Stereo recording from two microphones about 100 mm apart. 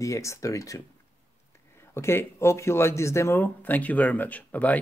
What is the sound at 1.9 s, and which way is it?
Speech, 25° left (ahead or behind).